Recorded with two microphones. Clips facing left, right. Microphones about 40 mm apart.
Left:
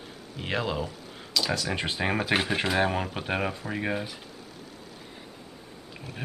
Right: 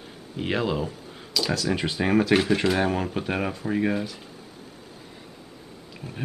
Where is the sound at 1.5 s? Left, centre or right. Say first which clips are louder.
Right 3 dB; centre.